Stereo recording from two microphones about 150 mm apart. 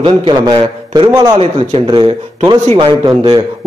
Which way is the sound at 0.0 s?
30° right (ahead or behind).